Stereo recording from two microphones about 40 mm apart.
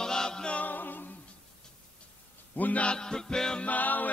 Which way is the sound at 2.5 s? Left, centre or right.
Left.